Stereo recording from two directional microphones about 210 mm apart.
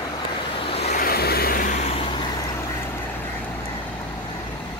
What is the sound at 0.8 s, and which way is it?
Vehicle, 45° left (ahead or behind).